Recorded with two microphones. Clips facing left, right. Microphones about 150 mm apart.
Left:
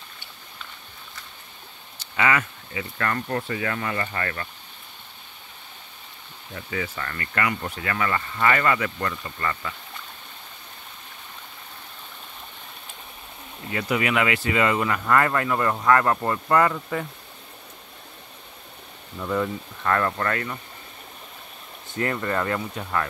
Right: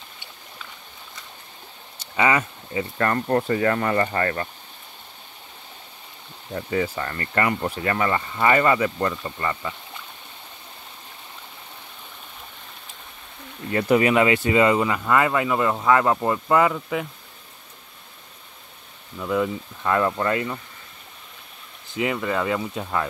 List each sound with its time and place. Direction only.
2.1 s speech: 20° right (ahead or behind)
6.5 s speech: 35° right (ahead or behind)
13.7 s speech: 35° right (ahead or behind); by 17.1 s 10° right (ahead or behind)
19.2 s speech: 5° right (ahead or behind)
21.9 s speech: 10° right (ahead or behind)